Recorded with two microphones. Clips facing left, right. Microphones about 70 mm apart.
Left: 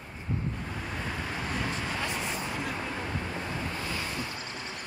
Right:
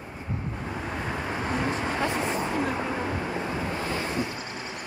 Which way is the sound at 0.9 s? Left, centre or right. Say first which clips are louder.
Right 4 dB; right.